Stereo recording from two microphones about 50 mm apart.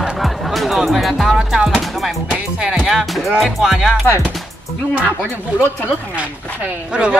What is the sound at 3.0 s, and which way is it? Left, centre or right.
Speech, centre.